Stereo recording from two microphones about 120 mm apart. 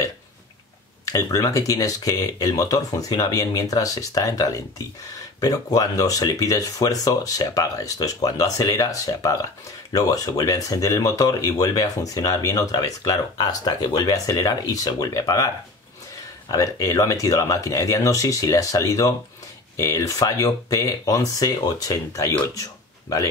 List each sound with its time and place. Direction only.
1.0 s speech: 30° left (ahead or behind)